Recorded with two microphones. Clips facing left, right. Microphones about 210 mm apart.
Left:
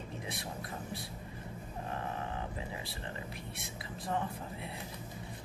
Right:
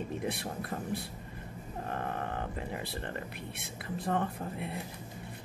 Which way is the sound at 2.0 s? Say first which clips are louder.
Right 3 dB; 60° right (ahead or behind).